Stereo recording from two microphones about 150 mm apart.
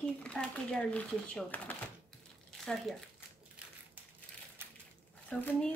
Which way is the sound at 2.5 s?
Centre (ahead or behind).